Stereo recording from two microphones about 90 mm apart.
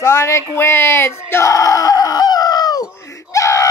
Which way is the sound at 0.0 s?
30° left (ahead or behind).